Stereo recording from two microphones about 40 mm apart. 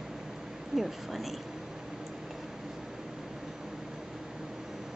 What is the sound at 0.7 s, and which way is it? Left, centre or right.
Speech, centre.